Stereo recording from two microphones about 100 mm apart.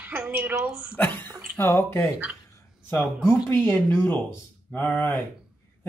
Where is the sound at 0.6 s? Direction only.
10° right (ahead or behind).